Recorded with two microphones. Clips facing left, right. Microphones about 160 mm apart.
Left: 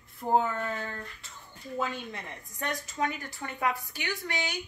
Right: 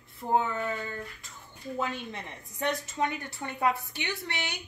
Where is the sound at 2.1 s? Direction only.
25° right (ahead or behind).